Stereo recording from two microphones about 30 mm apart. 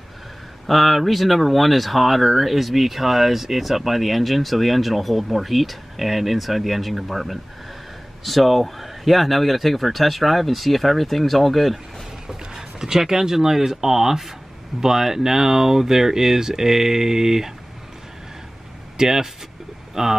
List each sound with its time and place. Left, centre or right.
0.7 s speech: centre
12.3 s speech: centre
18.9 s speech: centre